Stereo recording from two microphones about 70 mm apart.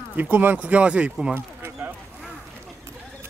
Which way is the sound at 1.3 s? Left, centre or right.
Right.